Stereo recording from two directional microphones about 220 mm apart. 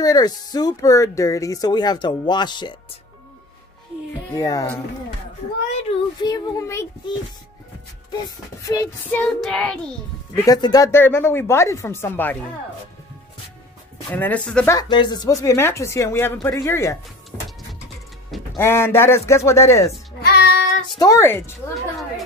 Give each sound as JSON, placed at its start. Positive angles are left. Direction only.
{"t": 0.0, "sound": "speech", "side_deg": 20}
{"t": 4.3, "sound": "speech", "side_deg": 15}
{"t": 6.2, "sound": "speech", "side_deg": 15}
{"t": 8.2, "sound": "speech", "side_deg": 15}
{"t": 9.2, "sound": "child singing", "side_deg": 5}
{"t": 10.3, "sound": "speech", "side_deg": 15}
{"t": 14.1, "sound": "speech", "side_deg": 5}
{"t": 14.8, "sound": "speech", "side_deg": 20}
{"t": 17.3, "sound": "printer", "side_deg": 10}
{"t": 18.6, "sound": "speech", "side_deg": 10}
{"t": 20.2, "sound": "child singing", "side_deg": 45}
{"t": 21.0, "sound": "speech", "side_deg": 15}